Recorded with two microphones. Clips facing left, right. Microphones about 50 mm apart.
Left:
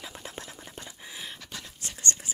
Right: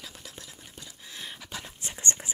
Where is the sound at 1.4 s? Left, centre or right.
Centre.